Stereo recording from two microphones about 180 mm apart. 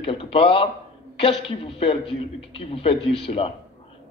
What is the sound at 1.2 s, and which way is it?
Speech, 30° left (ahead or behind).